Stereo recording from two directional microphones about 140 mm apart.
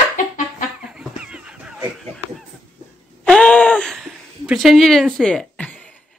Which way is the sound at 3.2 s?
5° left (ahead or behind).